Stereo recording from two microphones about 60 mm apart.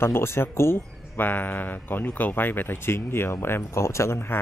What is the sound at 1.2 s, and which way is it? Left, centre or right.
A man's voice, left.